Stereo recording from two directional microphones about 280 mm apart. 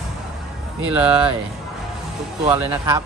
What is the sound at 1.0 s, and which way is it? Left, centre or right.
Speech, centre.